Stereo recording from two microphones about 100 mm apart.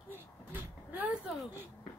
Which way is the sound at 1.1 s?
5° right (ahead or behind).